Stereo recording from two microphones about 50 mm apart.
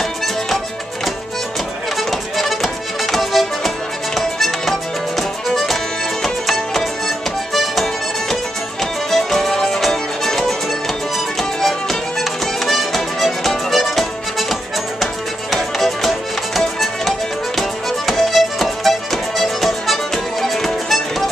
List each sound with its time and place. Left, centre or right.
2.0 s music: centre
15.5 s music: centre